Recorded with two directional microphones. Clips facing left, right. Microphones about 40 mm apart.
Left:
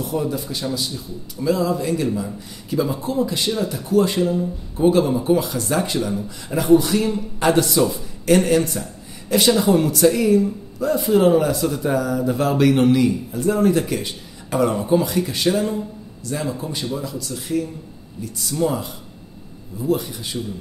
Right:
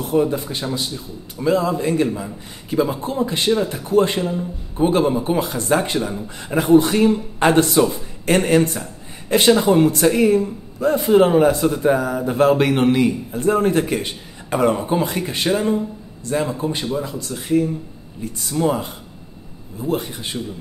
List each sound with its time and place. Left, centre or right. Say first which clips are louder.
0.1 s a man's voice: right 8 dB; right
19.9 s a man's voice: left 1 dB; right